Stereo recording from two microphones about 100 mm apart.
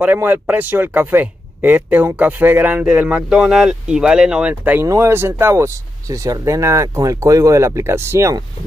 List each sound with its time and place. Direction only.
0.0 s speech: 20° right (ahead or behind)
4.8 s speech: 30° right (ahead or behind)